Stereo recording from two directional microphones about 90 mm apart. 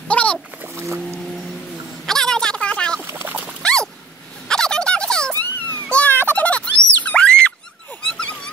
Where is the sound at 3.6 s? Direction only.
10° left (ahead or behind).